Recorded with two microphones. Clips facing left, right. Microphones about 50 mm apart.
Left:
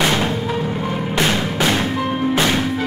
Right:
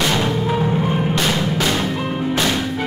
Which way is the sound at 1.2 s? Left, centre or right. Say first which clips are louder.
Left 1 dB; centre.